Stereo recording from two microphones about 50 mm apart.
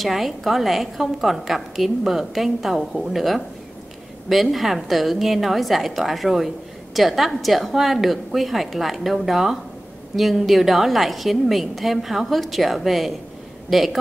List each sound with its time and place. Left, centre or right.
0.0 s a woman's voice: centre